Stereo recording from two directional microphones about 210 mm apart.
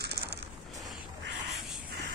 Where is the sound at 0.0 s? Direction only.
50° right (ahead or behind).